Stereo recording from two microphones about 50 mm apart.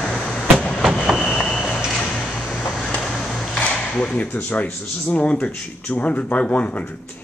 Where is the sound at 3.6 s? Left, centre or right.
Left.